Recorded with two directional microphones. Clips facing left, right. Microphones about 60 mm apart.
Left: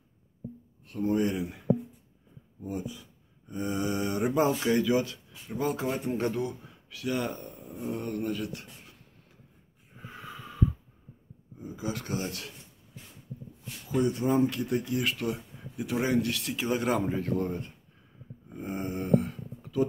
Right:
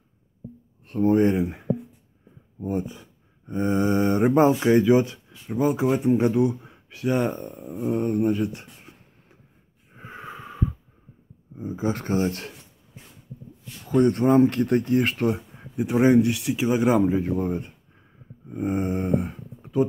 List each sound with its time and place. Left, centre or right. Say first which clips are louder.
0.8 s speech: right 8 dB; right
4.5 s speech: right 8 dB; right
9.9 s wheeze: right 5 dB; right
11.5 s speech: right 8 dB; right
13.8 s speech: right 8 dB; right
15.7 s speech: right 9 dB; right; by 17.6 s centre
18.5 s speech: right 9 dB; right